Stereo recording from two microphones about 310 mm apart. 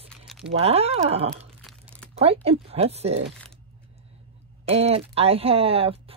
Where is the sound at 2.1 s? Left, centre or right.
Centre.